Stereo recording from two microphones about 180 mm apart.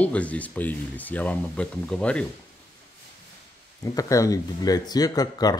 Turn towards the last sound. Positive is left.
turn(degrees=20)  # may be behind; listen again after turning